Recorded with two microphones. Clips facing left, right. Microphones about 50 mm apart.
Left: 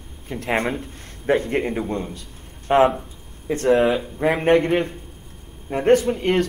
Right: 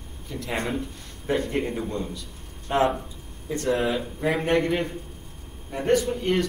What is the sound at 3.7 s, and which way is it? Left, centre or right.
Speech, left.